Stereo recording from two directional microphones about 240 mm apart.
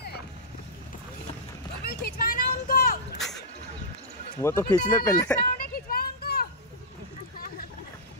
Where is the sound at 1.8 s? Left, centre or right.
Left.